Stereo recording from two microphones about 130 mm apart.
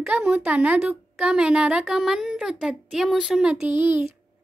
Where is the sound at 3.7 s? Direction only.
15° right (ahead or behind).